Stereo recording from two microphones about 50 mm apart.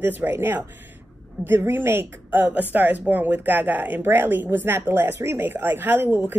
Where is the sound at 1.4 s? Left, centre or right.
Right.